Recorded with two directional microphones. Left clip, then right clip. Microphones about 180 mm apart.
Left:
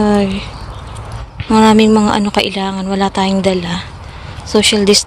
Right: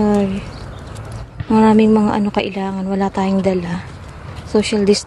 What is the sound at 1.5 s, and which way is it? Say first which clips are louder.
Speech: left 3 dB; centre (ahead or behind).